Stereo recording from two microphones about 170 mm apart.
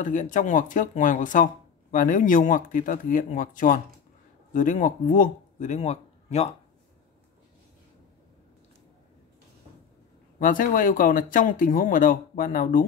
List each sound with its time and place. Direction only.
0.0 s speech: 50° left (ahead or behind)
10.4 s speech: 50° left (ahead or behind)